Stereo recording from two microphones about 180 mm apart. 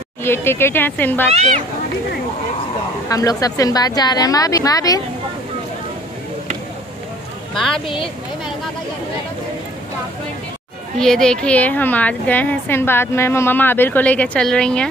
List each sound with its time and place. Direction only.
0.2 s a woman's voice: 15° left (ahead or behind)
1.3 s speech: 35° right (ahead or behind)
3.1 s speech: 20° left (ahead or behind)
7.5 s speech: centre (ahead or behind)
7.8 s speech: 30° left (ahead or behind)
11.0 s a woman's voice: 5° left (ahead or behind)